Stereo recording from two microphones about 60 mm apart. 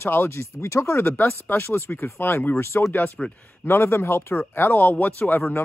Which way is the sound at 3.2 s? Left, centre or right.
Centre.